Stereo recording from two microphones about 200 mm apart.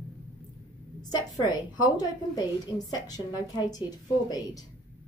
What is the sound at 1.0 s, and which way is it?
A woman's voice, 20° left (ahead or behind).